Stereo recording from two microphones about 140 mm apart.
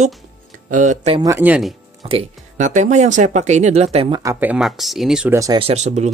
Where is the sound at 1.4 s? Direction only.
10° right (ahead or behind).